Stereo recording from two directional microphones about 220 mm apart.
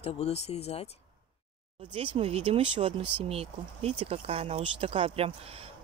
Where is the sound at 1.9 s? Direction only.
25° right (ahead or behind).